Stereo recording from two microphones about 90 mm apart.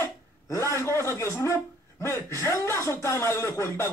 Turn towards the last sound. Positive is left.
turn(degrees=30)  # may be behind; listen again after turning